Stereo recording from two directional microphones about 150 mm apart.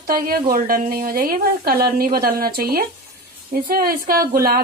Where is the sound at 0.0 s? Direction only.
75° right (ahead or behind).